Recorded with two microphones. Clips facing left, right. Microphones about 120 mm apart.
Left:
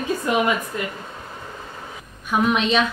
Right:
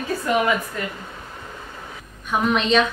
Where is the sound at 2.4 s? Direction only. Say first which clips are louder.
Right 1 dB; 5° left (ahead or behind).